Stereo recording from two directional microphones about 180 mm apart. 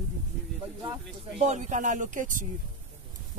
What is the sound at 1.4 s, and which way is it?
Speech, 40° right (ahead or behind).